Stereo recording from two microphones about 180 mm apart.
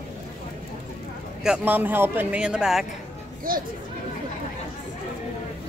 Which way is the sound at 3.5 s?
55° right (ahead or behind).